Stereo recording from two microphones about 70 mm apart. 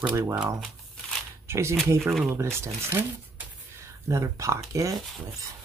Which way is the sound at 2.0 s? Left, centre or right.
Centre.